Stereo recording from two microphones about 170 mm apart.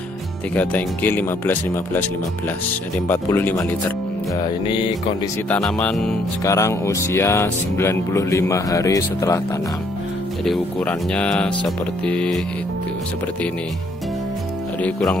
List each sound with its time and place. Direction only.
0.6 s speech: 10° left (ahead or behind)
3.1 s speech: 10° left (ahead or behind)
4.5 s music: 25° left (ahead or behind)
5.5 s speech: 5° left (ahead or behind)
6.4 s speech: 20° left (ahead or behind)
10.4 s speech: 5° left (ahead or behind)
14.8 s speech: 5° left (ahead or behind)